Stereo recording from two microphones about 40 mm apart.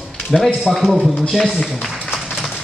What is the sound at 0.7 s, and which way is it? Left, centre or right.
Speech, centre.